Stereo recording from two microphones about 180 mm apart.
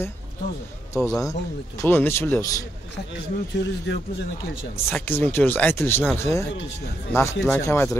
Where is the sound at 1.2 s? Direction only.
15° left (ahead or behind).